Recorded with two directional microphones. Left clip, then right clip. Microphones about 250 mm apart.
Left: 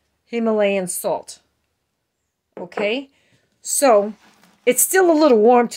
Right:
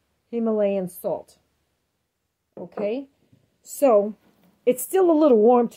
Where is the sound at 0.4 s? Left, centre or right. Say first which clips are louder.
Left 4 dB; left.